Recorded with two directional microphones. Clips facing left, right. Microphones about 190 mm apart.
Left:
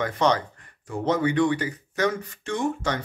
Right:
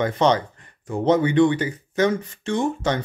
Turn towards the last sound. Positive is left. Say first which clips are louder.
# right 4 dB
turn(degrees=-25)  # may be behind; listen again after turning